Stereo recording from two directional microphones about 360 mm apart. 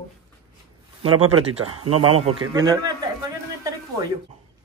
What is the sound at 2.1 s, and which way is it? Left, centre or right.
Speech, centre.